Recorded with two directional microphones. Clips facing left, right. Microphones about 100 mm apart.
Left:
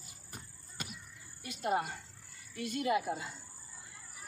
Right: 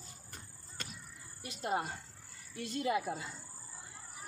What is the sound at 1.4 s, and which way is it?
A woman's voice, 30° right (ahead or behind).